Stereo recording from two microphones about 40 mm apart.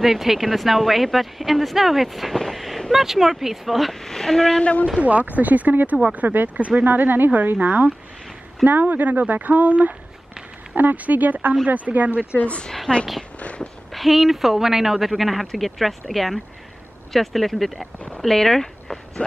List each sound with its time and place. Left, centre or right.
0.0 s speech: centre
2.3 s vehicle: centre
2.9 s speech: centre
4.0 s speech: centre
5.0 s speech: right
6.5 s speech: right
6.8 s speech: right
12.6 s a woman's voice: centre
13.4 s a sound: left
13.9 s speech: centre